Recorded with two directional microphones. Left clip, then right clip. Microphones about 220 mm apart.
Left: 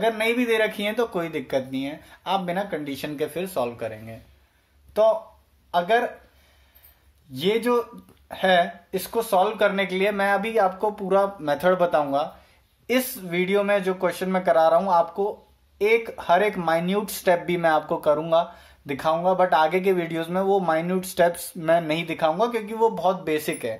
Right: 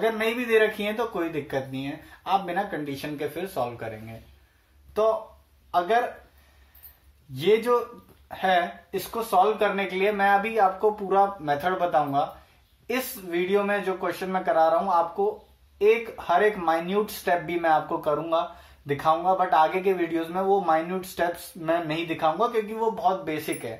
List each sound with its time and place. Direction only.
0.0 s speech: 50° left (ahead or behind)
5.7 s speech: 50° left (ahead or behind)
7.3 s speech: 50° left (ahead or behind)